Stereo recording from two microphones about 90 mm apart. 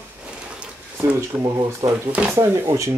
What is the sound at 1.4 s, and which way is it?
Speech, 45° right (ahead or behind).